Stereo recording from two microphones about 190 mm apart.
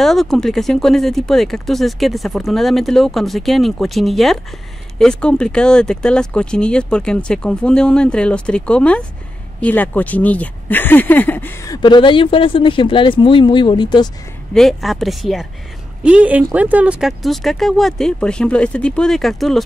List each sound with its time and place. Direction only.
0.0 s speech: centre (ahead or behind); by 14.1 s 25° left (ahead or behind)
14.5 s speech: centre (ahead or behind)